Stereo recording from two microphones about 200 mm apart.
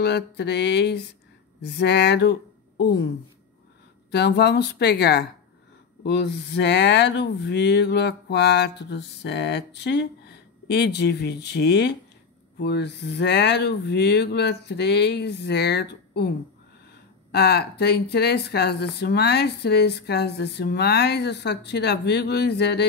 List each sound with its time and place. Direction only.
0.0 s speech: 55° left (ahead or behind)
4.1 s speech: 55° left (ahead or behind)